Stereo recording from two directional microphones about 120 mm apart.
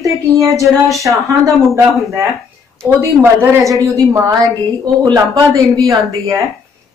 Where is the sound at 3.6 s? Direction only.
30° right (ahead or behind).